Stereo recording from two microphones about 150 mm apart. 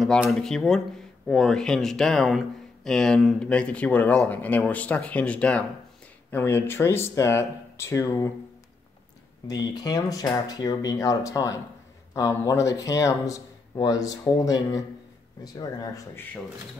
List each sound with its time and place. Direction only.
0.0 s speech: centre (ahead or behind); by 8.3 s 20° left (ahead or behind)
9.5 s speech: 25° left (ahead or behind)